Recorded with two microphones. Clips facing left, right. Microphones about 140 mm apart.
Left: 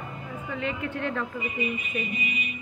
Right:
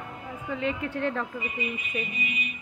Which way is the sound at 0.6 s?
35° right (ahead or behind).